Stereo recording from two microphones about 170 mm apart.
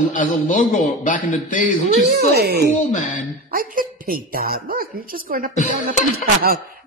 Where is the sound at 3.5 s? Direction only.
55° right (ahead or behind).